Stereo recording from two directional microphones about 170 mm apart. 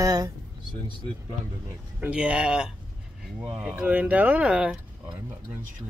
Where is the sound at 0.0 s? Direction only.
25° right (ahead or behind).